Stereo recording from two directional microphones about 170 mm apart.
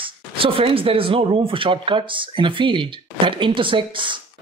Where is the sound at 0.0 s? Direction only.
30° right (ahead or behind).